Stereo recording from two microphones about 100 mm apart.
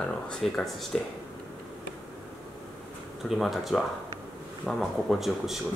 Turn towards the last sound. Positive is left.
turn(degrees=0)  # may be behind; listen again after turning